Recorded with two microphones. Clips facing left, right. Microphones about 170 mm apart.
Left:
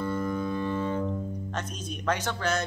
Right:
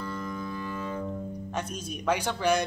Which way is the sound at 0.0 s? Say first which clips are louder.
Left 6 dB; 25° left (ahead or behind).